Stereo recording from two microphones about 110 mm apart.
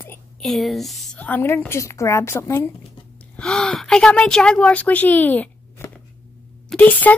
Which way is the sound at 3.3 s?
5° left (ahead or behind).